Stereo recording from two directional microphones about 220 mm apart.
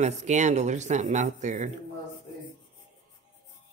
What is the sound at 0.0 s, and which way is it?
Speech, 30° right (ahead or behind).